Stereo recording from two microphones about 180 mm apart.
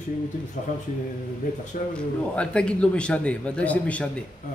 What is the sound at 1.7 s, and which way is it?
Speech, 45° left (ahead or behind).